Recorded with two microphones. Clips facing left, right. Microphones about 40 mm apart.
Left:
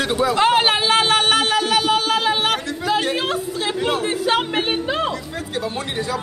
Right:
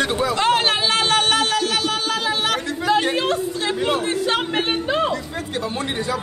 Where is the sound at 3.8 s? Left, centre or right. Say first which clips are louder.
Even; centre.